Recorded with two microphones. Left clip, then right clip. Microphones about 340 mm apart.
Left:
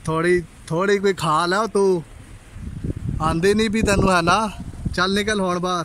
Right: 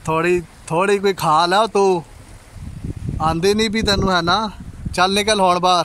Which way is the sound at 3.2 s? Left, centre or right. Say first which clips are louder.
Right 2 dB; centre.